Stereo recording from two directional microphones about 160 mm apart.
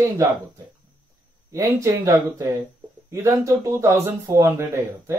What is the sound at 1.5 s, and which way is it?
Speech, 20° right (ahead or behind).